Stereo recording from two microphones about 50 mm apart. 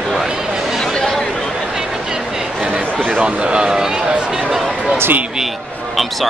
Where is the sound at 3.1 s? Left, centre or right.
Right; by 4.9 s centre.